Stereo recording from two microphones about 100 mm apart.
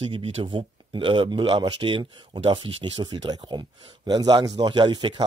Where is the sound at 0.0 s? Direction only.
70° right (ahead or behind).